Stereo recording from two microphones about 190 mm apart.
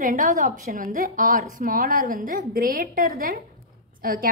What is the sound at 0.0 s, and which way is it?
A woman's voice, 45° right (ahead or behind).